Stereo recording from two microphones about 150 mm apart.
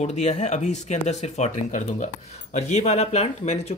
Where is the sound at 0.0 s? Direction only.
50° left (ahead or behind).